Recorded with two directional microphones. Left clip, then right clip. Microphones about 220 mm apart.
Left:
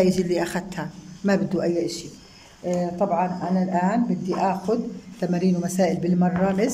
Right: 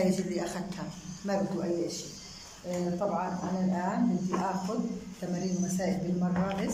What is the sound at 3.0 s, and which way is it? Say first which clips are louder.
Speech: left 9 dB; 50° left (ahead or behind).